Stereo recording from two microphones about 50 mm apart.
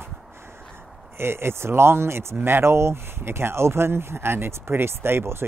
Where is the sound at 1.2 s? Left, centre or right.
Right.